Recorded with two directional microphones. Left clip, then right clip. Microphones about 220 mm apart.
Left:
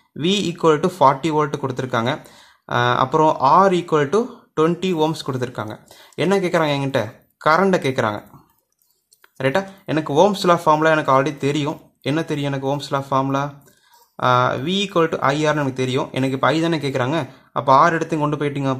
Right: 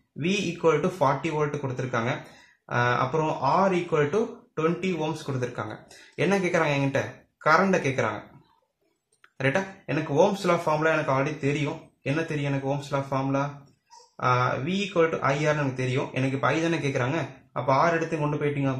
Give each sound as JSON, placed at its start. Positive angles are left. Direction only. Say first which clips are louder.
{"t": 0.6, "sound": "speech", "louder": "left 7 dB", "side_deg": 45}
{"t": 9.4, "sound": "speech", "louder": "left 6 dB", "side_deg": 40}